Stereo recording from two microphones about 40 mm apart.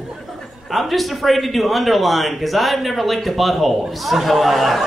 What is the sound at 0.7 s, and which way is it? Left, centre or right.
Speech, centre.